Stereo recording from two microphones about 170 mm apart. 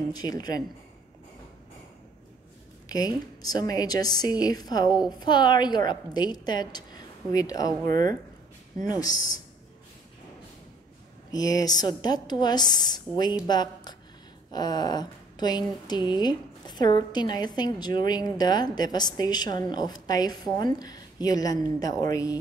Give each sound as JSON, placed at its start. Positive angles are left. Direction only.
{"t": 0.1, "sound": "a woman's voice", "side_deg": 20}
{"t": 2.9, "sound": "a woman's voice", "side_deg": 20}
{"t": 7.8, "sound": "speech", "side_deg": -55}
{"t": 8.8, "sound": "a woman's voice", "side_deg": 25}
{"t": 11.3, "sound": "a woman's voice", "side_deg": 20}